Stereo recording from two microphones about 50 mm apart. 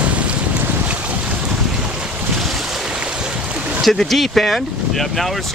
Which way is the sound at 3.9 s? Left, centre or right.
Centre.